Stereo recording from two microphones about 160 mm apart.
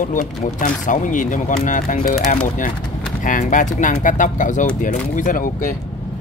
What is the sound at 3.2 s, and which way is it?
Speech, 55° left (ahead or behind).